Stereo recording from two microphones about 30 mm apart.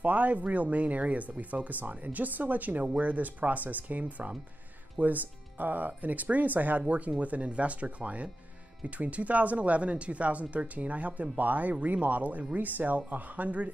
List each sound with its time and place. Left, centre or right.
0.0 s speech: right
2.1 s speech: right
6.9 s speech: right
12.5 s speech: right